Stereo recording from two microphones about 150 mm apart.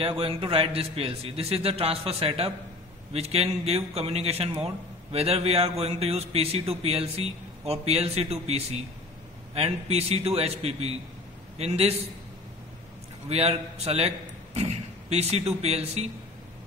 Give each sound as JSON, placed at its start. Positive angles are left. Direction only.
{"t": 0.0, "sound": "a man's voice", "side_deg": -40}
{"t": 13.3, "sound": "a man's voice", "side_deg": -45}